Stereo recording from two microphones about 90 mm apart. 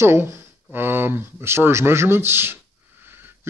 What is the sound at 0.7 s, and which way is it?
Speech, 25° right (ahead or behind).